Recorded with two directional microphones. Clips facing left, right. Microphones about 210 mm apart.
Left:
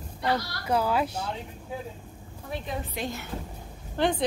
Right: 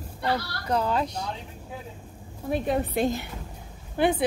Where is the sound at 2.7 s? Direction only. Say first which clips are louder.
Right 9 dB; 60° right (ahead or behind).